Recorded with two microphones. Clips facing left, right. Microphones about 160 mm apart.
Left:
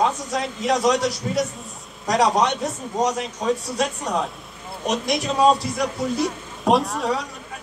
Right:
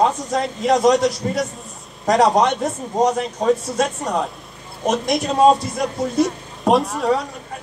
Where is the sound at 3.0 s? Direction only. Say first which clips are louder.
Right 5 dB; 45° right (ahead or behind).